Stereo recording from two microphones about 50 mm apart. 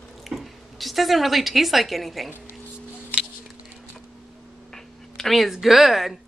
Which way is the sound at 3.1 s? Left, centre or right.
Left.